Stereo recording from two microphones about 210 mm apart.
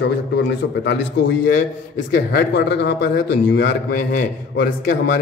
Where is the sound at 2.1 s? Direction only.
50° left (ahead or behind).